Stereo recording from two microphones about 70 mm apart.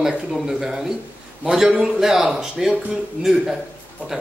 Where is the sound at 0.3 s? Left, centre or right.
Centre.